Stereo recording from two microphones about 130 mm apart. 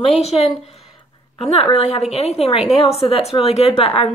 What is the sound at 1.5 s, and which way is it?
Speech, 55° left (ahead or behind).